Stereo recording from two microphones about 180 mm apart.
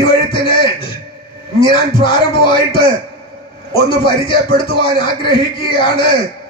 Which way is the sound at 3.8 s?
30° left (ahead or behind).